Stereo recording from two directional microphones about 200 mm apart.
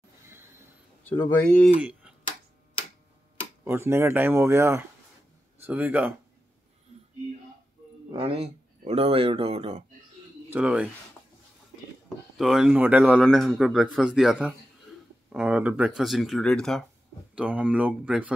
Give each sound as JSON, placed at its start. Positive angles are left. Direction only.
{"t": 1.0, "sound": "speech", "side_deg": 10}
{"t": 1.8, "sound": "a sound", "side_deg": -5}
{"t": 3.6, "sound": "speech", "side_deg": -10}
{"t": 8.1, "sound": "speech", "side_deg": -30}
{"t": 10.5, "sound": "speech", "side_deg": -5}
{"t": 12.4, "sound": "speech", "side_deg": 0}
{"t": 17.4, "sound": "speech", "side_deg": -5}